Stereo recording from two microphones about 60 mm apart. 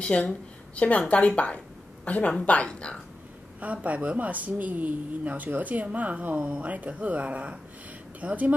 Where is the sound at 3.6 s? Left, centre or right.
Right.